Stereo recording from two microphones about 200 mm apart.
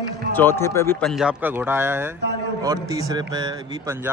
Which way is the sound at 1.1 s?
5° right (ahead or behind).